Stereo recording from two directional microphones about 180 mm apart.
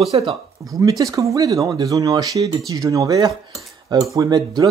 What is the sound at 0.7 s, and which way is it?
Speech, 20° right (ahead or behind).